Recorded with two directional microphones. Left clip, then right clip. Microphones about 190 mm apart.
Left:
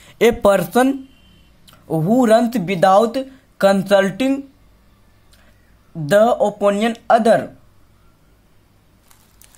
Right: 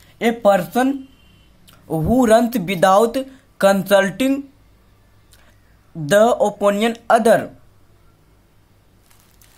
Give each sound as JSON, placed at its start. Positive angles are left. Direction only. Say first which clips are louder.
{"t": 0.2, "sound": "speech", "louder": "left 2 dB", "side_deg": 30}
{"t": 1.7, "sound": "speech", "louder": "left 1 dB", "side_deg": 5}
{"t": 5.9, "sound": "speech", "louder": "even", "side_deg": 0}